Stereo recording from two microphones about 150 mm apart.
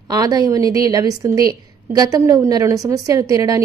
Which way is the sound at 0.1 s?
25° right (ahead or behind).